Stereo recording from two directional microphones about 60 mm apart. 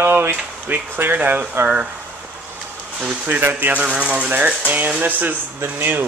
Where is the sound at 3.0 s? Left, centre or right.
Centre.